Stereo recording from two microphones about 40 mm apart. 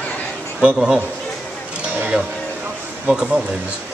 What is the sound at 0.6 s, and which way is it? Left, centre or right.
Speech, centre.